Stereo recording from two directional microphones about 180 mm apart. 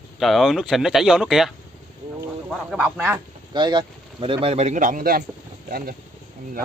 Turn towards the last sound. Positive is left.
turn(degrees=-55)  # may be behind; listen again after turning